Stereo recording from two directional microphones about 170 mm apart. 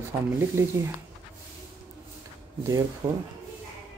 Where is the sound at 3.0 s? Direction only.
30° right (ahead or behind).